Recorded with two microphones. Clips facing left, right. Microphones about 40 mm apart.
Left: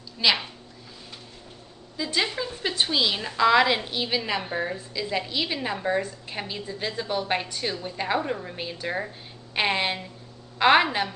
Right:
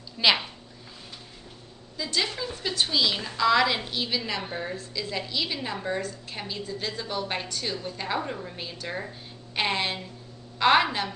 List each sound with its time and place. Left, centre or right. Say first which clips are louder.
0.2 s a woman's voice: right 1 dB; centre
2.0 s a woman's voice: left 2 dB; centre